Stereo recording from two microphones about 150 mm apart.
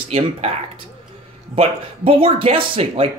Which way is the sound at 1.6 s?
40° right (ahead or behind).